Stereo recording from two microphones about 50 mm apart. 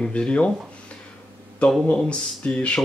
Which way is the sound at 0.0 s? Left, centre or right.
Left.